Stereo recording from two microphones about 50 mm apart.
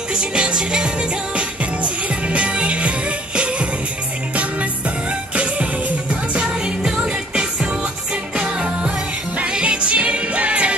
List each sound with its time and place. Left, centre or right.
0.1 s music: right
5.3 s music: right